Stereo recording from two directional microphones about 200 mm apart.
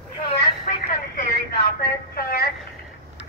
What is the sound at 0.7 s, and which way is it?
Telephone, 45° left (ahead or behind).